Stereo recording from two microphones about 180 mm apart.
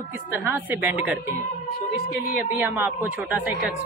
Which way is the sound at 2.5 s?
10° right (ahead or behind).